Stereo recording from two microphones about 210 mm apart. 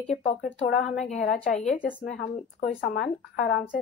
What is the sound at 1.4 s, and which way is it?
Speech, 30° left (ahead or behind).